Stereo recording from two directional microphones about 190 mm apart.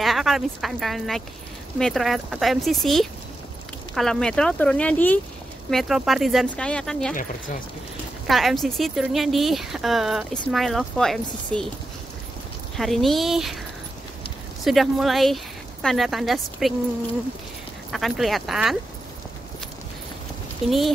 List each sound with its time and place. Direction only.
0.0 s speech: centre (ahead or behind)
8.3 s speech: centre (ahead or behind)
12.7 s speech: centre (ahead or behind)
14.6 s speech: centre (ahead or behind)
17.9 s speech: centre (ahead or behind)
20.6 s speech: centre (ahead or behind)